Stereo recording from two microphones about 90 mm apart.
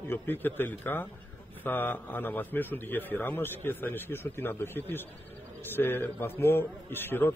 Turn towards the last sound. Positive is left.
turn(degrees=25)  # may be behind; listen again after turning